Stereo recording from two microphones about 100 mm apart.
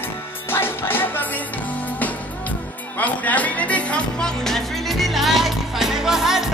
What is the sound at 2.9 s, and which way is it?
Music, 15° left (ahead or behind).